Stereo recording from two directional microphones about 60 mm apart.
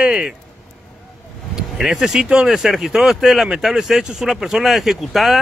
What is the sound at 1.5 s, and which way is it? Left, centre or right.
Speech, centre.